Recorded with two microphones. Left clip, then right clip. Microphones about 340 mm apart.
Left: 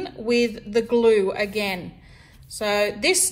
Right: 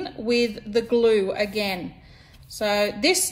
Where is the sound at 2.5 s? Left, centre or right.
Centre.